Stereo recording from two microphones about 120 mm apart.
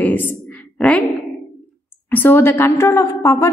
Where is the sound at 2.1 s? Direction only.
15° left (ahead or behind).